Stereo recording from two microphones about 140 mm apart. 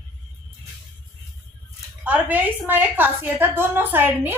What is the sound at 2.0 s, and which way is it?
Speech, 10° right (ahead or behind).